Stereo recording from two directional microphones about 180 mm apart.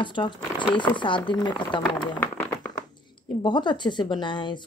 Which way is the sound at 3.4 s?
25° left (ahead or behind).